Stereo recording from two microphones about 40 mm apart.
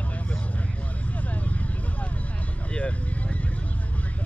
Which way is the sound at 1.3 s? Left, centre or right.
Left.